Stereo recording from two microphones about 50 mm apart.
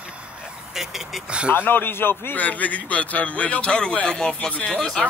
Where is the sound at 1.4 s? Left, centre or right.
Left.